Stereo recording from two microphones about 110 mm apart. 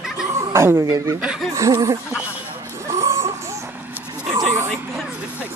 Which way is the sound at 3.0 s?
25° right (ahead or behind).